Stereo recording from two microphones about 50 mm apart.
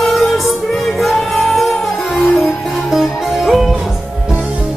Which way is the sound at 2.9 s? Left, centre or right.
Centre.